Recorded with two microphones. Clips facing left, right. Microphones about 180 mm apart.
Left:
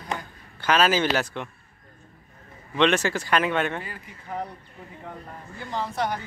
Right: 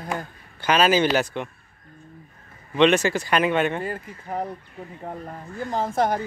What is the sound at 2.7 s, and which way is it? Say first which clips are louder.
Speech: right 4 dB; 10° right (ahead or behind).